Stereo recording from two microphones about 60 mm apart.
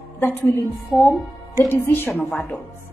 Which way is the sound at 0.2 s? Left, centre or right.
Left.